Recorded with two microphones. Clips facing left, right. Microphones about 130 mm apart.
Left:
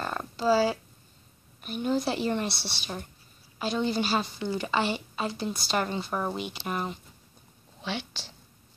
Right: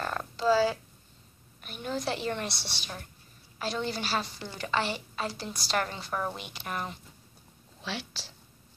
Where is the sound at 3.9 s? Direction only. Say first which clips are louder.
Left 5 dB; 25° left (ahead or behind).